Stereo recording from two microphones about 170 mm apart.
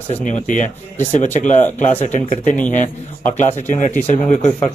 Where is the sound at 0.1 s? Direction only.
45° left (ahead or behind).